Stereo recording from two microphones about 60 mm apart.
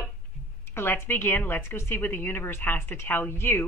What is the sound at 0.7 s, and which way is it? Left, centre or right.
A woman's voice, left.